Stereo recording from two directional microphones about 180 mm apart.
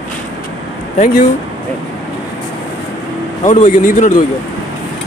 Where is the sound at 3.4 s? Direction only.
40° left (ahead or behind).